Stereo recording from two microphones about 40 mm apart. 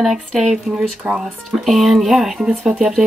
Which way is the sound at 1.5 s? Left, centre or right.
Centre.